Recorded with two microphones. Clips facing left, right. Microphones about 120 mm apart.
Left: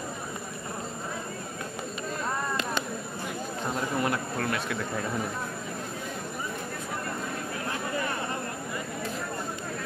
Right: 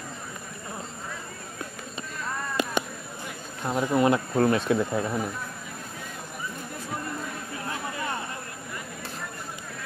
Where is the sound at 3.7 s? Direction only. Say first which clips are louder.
Right 7 dB; 20° right (ahead or behind).